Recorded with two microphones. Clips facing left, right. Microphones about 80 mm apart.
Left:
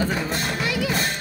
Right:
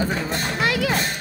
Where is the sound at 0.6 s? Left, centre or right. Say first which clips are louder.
Right 6 dB; right.